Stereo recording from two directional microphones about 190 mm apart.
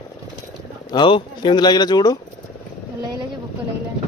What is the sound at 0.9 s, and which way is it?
Speech, 25° left (ahead or behind).